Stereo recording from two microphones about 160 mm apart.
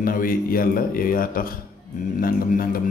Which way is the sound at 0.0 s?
60° left (ahead or behind).